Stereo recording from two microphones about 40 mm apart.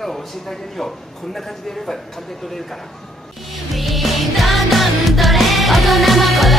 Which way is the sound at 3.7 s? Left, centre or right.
Centre.